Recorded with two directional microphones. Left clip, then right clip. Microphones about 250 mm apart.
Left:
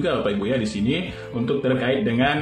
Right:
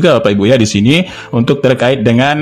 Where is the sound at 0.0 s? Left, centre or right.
Right.